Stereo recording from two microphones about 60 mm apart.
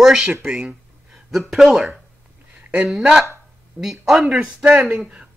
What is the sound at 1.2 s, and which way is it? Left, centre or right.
Speech, centre.